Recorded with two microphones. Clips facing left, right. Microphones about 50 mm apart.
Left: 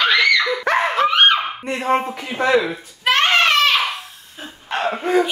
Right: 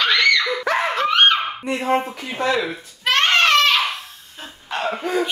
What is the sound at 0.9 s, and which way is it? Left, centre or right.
Laughter, centre.